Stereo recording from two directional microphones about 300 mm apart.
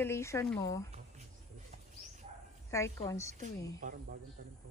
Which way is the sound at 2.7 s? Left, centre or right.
Centre.